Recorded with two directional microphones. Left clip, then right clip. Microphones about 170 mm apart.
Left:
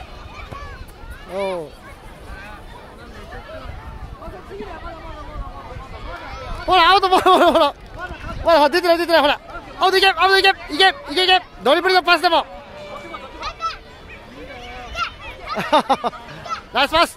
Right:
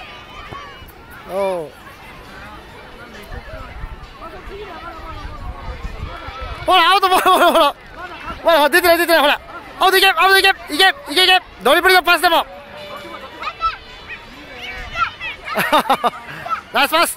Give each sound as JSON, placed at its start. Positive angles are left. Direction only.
{"t": 1.3, "sound": "speech", "side_deg": -5}
{"t": 6.7, "sound": "a man's voice", "side_deg": -5}
{"t": 14.6, "sound": "a sound", "side_deg": 65}
{"t": 15.5, "sound": "a man's voice", "side_deg": -10}